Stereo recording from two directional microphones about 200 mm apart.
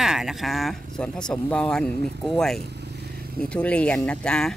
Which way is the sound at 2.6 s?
55° right (ahead or behind).